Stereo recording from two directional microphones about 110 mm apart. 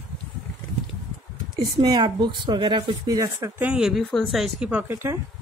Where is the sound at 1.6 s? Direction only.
40° right (ahead or behind).